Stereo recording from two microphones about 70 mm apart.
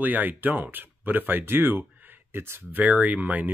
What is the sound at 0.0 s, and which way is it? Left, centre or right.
Speech, right.